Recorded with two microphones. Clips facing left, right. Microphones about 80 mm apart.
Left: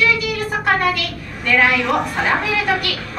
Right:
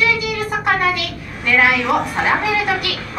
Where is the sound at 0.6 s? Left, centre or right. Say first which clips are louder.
Even; centre.